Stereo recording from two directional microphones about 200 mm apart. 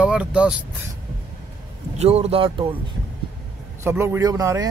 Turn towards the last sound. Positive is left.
turn(degrees=-15)  # may be behind; listen again after turning